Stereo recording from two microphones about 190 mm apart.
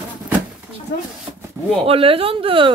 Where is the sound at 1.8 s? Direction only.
30° right (ahead or behind).